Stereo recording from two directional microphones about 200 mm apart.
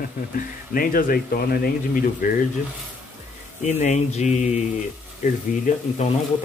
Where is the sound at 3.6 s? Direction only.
35° left (ahead or behind).